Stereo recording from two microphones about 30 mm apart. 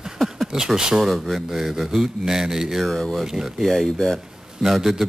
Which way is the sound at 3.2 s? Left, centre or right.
Centre.